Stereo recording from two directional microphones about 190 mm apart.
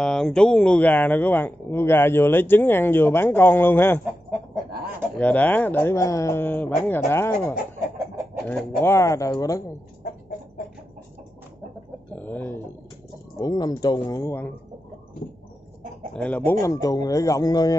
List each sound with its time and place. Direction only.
0.0 s speech: 5° left (ahead or behind)
5.2 s speech: 10° left (ahead or behind)
8.5 s speech: 10° left (ahead or behind)
12.1 s a sound: 10° left (ahead or behind)
13.4 s speech: 20° left (ahead or behind)
16.1 s speech: 5° left (ahead or behind)